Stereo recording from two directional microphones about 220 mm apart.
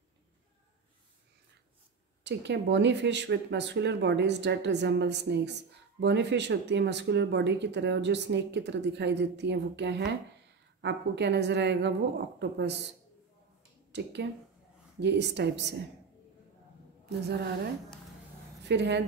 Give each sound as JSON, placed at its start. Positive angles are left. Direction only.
{"t": 2.2, "sound": "speech", "side_deg": -55}
{"t": 13.9, "sound": "speech", "side_deg": -50}
{"t": 17.0, "sound": "a woman's voice", "side_deg": -45}
{"t": 18.6, "sound": "speech", "side_deg": -50}